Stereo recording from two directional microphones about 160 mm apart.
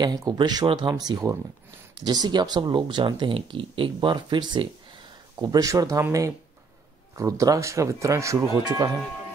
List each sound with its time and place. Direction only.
0.0 s speech: 25° right (ahead or behind)